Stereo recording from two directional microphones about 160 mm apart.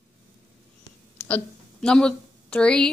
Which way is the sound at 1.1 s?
10° left (ahead or behind).